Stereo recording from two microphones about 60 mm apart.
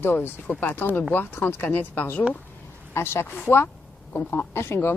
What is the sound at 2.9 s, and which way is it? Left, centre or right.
Speech, left.